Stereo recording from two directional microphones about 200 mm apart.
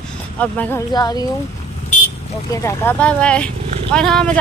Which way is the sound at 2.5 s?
10° left (ahead or behind).